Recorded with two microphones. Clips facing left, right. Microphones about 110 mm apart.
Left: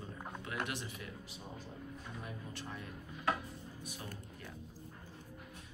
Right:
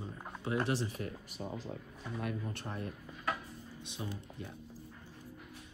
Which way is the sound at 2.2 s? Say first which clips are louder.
Right 8 dB; 55° right (ahead or behind).